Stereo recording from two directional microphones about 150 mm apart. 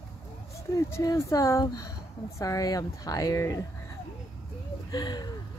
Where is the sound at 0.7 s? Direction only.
20° left (ahead or behind).